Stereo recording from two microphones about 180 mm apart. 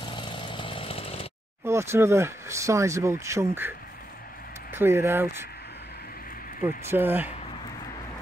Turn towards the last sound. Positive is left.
turn(degrees=-10)  # may be behind; listen again after turning